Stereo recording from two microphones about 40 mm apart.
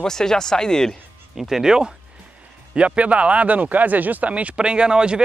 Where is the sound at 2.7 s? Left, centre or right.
Right.